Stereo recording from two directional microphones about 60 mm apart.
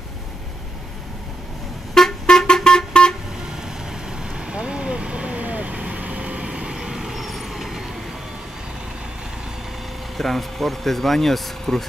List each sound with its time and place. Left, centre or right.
2.0 s vehicle horn: centre
4.2 s vehicle: centre
10.1 s speech: centre